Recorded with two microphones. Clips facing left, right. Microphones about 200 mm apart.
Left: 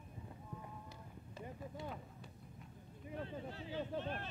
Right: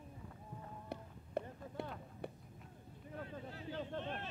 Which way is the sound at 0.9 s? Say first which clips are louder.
Right 11 dB; 60° right (ahead or behind).